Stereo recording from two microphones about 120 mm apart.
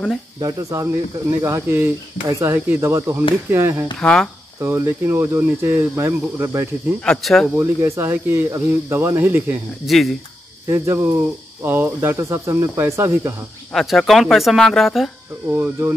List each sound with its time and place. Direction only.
0.4 s speech: 30° right (ahead or behind)
4.0 s speech: 5° left (ahead or behind)
4.6 s speech: 20° right (ahead or behind)
7.1 s speech: centre (ahead or behind)
7.5 s speech: 20° right (ahead or behind)
9.8 s speech: centre (ahead or behind)
10.7 s speech: 20° right (ahead or behind)
13.7 s speech: centre (ahead or behind)
15.5 s speech: 20° right (ahead or behind)